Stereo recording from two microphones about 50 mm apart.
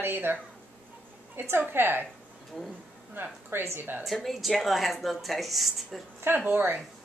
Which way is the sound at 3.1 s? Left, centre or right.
Right.